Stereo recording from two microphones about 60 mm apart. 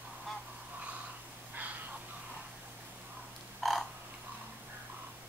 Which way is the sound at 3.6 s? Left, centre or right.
Centre.